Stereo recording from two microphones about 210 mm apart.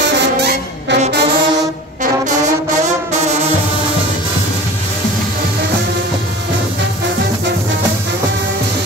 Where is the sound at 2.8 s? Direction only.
30° right (ahead or behind).